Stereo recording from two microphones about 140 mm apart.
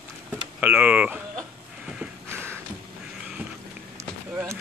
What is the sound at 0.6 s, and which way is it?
Speech, 10° right (ahead or behind).